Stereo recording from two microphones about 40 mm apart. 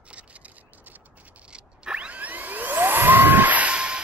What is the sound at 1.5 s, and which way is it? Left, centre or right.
Mechanisms, right.